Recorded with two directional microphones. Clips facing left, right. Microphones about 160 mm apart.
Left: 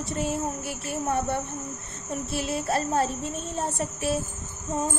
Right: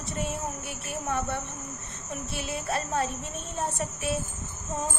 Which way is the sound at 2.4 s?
30° left (ahead or behind).